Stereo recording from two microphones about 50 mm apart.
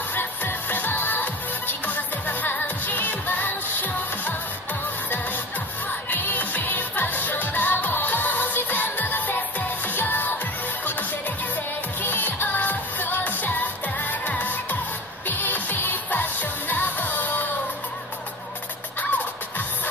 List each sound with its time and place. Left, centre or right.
0.1 s music: left
6.0 s music: left
12.0 s music: left